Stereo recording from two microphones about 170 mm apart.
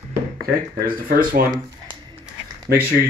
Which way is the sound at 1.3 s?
60° right (ahead or behind).